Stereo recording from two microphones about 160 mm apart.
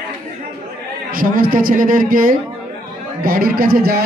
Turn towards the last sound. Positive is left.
turn(degrees=-75)  # may be behind; listen again after turning